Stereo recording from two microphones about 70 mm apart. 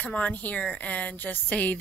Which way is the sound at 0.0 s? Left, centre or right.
Centre.